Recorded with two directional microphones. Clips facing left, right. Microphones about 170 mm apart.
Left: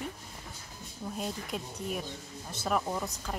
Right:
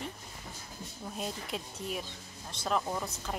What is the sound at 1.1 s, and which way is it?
A woman's voice, centre (ahead or behind).